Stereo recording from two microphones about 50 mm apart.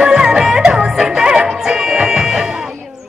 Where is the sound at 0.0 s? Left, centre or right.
Centre.